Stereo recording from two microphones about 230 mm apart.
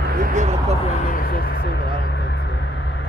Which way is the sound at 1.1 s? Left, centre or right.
Left.